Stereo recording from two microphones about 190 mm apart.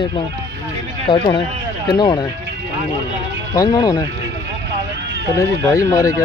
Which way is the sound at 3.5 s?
20° left (ahead or behind).